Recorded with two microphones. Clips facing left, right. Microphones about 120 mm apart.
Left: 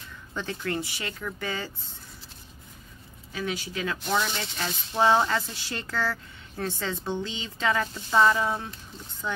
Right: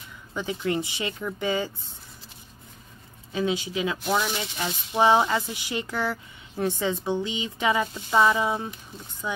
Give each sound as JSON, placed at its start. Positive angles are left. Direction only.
{"t": 0.3, "sound": "speech", "side_deg": -15}
{"t": 3.3, "sound": "speech", "side_deg": -20}
{"t": 4.0, "sound": "speech", "side_deg": -5}